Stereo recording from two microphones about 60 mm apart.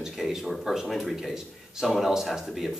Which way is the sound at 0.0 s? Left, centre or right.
Centre.